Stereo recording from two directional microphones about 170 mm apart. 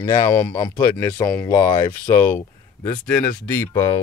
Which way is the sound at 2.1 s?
15° left (ahead or behind).